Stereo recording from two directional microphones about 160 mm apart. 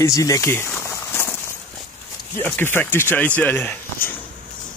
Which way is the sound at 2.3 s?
15° left (ahead or behind).